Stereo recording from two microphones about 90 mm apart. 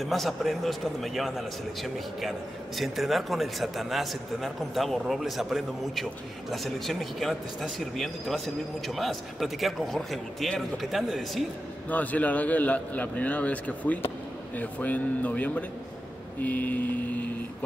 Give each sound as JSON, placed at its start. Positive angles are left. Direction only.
{"t": 0.0, "sound": "a man's voice", "side_deg": 0}
{"t": 11.9, "sound": "a man's voice", "side_deg": 15}
{"t": 16.3, "sound": "mantra", "side_deg": 20}